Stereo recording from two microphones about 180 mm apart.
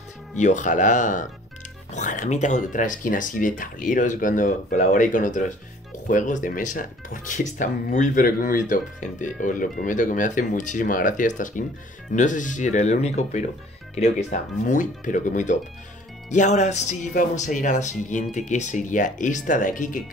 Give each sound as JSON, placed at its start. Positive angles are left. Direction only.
{"t": 0.4, "sound": "speech", "side_deg": 40}